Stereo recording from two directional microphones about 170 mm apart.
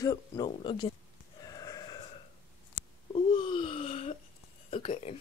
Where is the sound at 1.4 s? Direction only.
20° left (ahead or behind).